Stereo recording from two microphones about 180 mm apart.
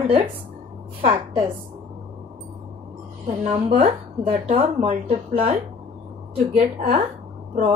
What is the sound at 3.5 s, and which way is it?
Speech, 30° right (ahead or behind).